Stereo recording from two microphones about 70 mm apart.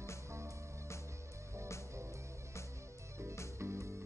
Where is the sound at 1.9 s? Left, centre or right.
Right.